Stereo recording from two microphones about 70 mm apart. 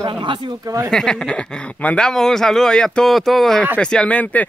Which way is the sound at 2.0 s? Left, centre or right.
Centre.